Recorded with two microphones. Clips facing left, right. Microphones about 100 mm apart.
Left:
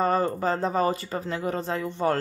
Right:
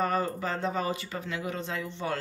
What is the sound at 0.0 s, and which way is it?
Speech, 35° left (ahead or behind).